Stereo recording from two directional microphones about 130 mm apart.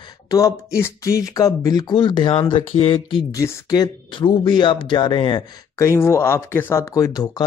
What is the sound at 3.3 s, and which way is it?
Speech, 30° left (ahead or behind).